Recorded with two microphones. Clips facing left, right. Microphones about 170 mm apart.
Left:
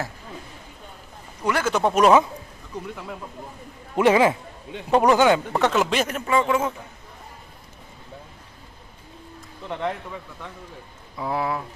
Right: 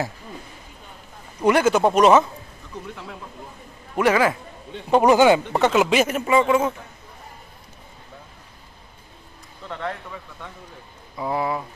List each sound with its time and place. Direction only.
1.4 s speech: 20° right (ahead or behind)
1.7 s speech: 5° right (ahead or behind)
2.0 s speech: 5° left (ahead or behind)
3.9 s a man's voice: 20° left (ahead or behind)
5.0 s speech: 10° right (ahead or behind)
9.7 s speech: 15° left (ahead or behind)
11.1 s speech: centre (ahead or behind)